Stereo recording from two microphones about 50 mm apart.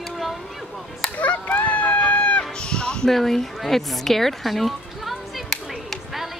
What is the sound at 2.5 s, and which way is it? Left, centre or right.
Speech, centre.